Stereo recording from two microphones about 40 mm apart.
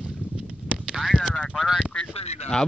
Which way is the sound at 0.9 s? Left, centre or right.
Centre.